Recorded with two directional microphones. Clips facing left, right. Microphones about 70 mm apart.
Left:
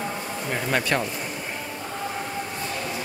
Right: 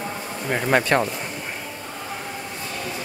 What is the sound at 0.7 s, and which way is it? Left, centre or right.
Speech, right.